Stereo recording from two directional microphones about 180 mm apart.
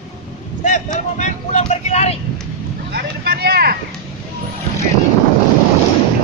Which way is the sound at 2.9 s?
60° right (ahead or behind).